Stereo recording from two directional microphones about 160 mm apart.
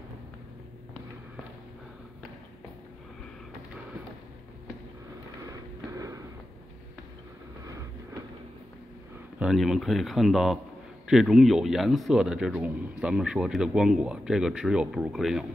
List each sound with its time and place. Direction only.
5.9 s a sound: 20° right (ahead or behind)
7.6 s vehicle: 20° right (ahead or behind)
9.4 s speech: centre (ahead or behind)